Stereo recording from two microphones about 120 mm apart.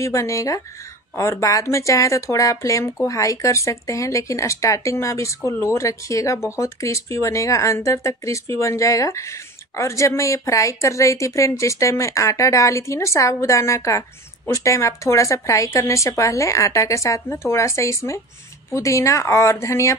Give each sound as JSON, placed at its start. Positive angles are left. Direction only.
{"t": 0.0, "sound": "speech", "side_deg": 25}